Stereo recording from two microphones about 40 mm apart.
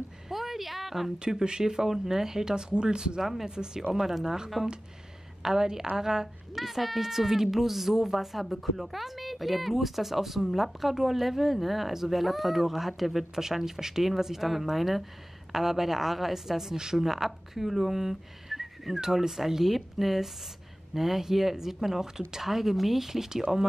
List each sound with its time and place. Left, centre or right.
0.3 s a sound: centre
1.2 s speech: centre
3.2 s speech: centre
3.4 s speech: centre
6.5 s speech: centre